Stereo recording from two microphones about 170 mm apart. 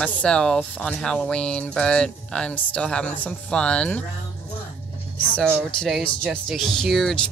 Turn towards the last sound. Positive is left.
turn(degrees=0)  # may be behind; listen again after turning